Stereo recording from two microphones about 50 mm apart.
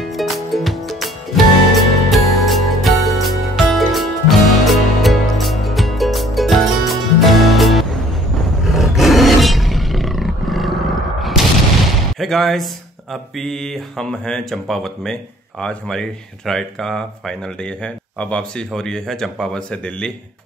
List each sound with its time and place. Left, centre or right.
0.2 s music: centre
8.6 s roar: centre
12.2 s speech: centre
17.8 s speech: left
18.7 s speech: centre